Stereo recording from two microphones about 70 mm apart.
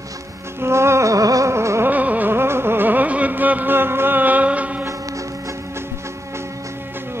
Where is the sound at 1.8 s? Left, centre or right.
Right.